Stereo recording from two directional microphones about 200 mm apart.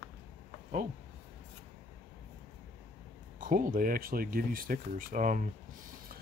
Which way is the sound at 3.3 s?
40° right (ahead or behind).